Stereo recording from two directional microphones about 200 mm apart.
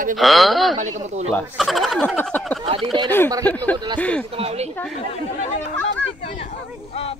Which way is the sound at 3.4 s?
10° left (ahead or behind).